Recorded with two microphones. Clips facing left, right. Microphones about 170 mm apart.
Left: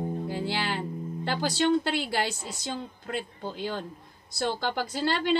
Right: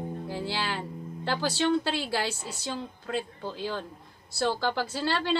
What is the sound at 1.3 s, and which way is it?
A woman's voice, 15° left (ahead or behind).